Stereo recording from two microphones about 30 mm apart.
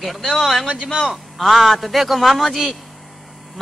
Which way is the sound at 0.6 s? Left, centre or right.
Right.